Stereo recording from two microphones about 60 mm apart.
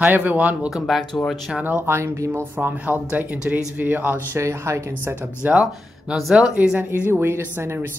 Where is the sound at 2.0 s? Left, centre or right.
Right.